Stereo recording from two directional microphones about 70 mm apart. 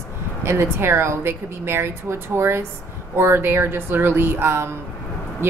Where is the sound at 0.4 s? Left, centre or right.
Right.